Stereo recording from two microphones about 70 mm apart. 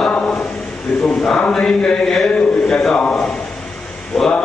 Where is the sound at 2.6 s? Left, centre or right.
Centre.